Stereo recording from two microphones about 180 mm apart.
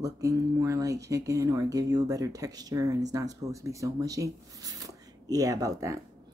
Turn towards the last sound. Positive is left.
turn(degrees=-20)  # may be behind; listen again after turning